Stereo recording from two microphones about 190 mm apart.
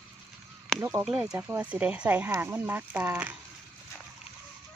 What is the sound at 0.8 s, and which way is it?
Speech, 15° right (ahead or behind).